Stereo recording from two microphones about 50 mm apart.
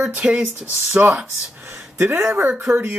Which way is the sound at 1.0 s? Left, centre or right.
Right.